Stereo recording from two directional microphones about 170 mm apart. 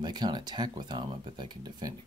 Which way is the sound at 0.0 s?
25° right (ahead or behind).